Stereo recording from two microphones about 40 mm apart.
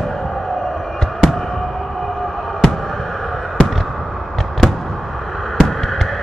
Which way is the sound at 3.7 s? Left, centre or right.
Centre.